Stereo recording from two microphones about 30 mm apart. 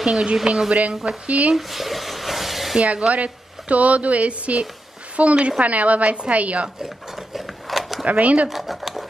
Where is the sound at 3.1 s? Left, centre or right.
Right.